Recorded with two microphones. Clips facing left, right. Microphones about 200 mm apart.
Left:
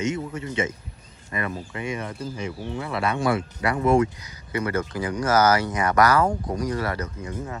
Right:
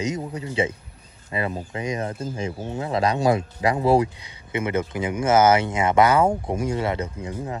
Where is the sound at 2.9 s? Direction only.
35° right (ahead or behind).